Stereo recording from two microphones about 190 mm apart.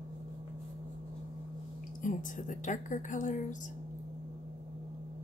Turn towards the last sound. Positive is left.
turn(degrees=40)  # may be behind; listen again after turning